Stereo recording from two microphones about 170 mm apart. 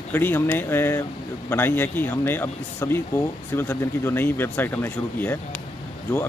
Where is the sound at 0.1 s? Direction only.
10° left (ahead or behind).